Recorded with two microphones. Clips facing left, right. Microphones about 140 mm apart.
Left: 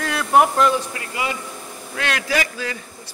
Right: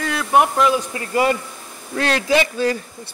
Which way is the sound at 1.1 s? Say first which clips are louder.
Right 9 dB; 45° right (ahead or behind).